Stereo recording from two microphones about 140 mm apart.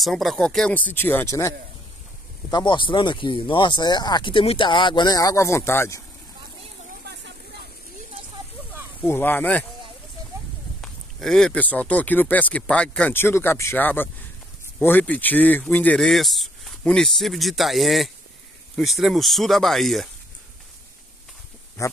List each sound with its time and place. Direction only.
0.0 s speech: centre (ahead or behind); by 1.5 s 20° left (ahead or behind)
2.5 s speech: 35° left (ahead or behind)
9.0 s speech: 15° left (ahead or behind)
10.8 s speech: 5° left (ahead or behind)
21.8 s speech: 20° left (ahead or behind)